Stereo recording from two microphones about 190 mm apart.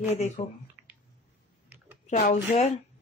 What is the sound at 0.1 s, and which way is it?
Speech, 35° left (ahead or behind).